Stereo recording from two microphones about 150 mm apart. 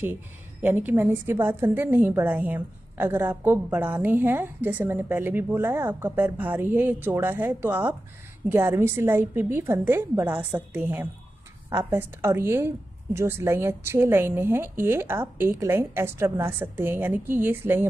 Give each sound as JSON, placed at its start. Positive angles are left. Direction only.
{"t": 0.0, "sound": "a woman's voice", "side_deg": -15}